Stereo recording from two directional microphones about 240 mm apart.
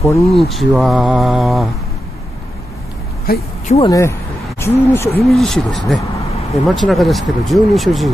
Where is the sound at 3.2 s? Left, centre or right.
Left.